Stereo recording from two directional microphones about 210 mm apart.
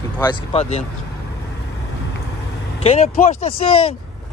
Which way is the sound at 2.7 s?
30° left (ahead or behind).